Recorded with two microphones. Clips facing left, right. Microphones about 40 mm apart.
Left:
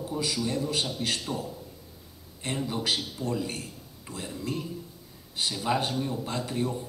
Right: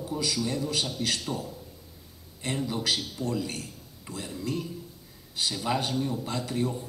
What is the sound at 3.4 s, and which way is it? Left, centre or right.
A man's voice, left.